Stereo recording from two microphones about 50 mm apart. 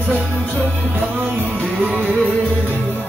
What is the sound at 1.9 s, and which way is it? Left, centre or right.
Music, right.